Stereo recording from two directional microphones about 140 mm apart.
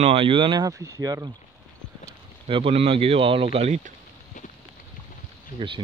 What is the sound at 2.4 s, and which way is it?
Speech, 40° right (ahead or behind).